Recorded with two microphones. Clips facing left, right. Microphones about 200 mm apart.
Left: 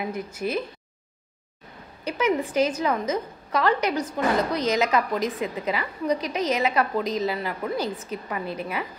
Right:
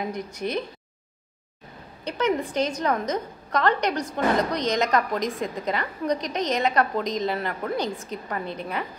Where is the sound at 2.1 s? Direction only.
5° left (ahead or behind).